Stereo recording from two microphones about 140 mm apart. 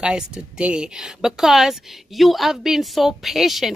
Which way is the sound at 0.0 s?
5° right (ahead or behind).